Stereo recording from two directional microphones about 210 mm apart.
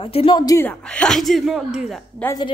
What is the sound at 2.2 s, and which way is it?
Speech, 15° left (ahead or behind).